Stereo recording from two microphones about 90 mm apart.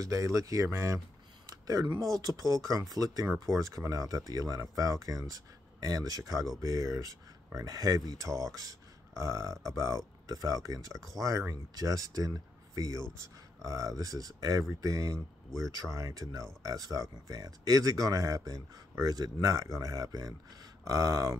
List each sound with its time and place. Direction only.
0.0 s speech: 40° right (ahead or behind)
1.5 s a sound: 40° right (ahead or behind)
2.1 s speech: 40° right (ahead or behind)